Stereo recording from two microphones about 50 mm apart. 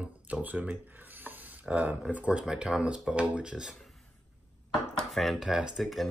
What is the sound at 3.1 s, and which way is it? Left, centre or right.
Speech, right.